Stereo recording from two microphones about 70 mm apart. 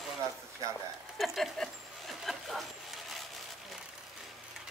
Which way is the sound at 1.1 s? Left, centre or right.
Centre.